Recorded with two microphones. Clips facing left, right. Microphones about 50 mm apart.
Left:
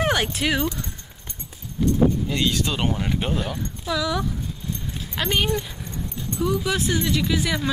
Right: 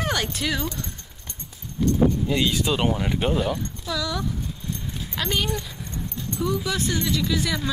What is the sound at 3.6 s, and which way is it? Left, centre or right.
Speech, centre.